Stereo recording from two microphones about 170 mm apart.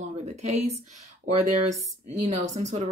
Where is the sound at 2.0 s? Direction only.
40° right (ahead or behind).